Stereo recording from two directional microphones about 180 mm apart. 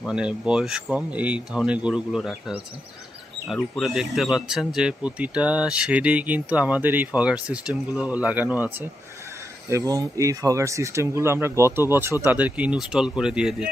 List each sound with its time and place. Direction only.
0.0 s speech: 5° right (ahead or behind)